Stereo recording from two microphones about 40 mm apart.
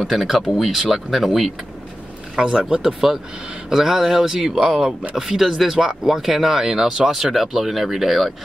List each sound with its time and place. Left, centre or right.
0.0 s speech: centre
2.3 s speech: centre